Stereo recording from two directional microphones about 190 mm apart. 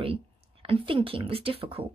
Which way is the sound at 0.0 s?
30° right (ahead or behind).